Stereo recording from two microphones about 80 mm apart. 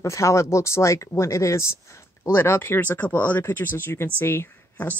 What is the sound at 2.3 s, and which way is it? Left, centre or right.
Speech, left.